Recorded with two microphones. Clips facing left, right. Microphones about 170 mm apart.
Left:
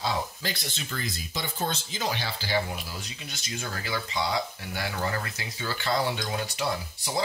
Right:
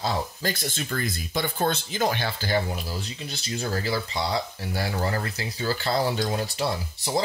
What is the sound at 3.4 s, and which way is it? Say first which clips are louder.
Speech: right 7 dB; 35° right (ahead or behind).